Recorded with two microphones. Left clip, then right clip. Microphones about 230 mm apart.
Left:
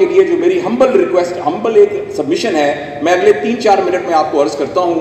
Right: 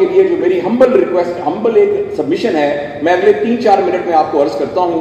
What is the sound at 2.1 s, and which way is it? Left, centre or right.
A man's voice, left.